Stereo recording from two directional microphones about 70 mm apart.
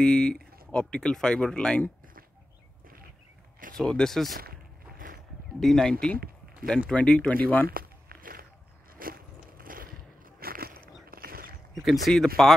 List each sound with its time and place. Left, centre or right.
0.0 s speech: centre
3.7 s speech: centre
5.6 s speech: centre; by 7.6 s left
11.8 s speech: centre